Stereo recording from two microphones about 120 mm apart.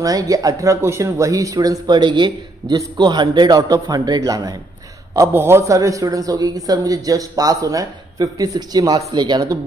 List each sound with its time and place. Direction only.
0.0 s a man's voice: 30° right (ahead or behind)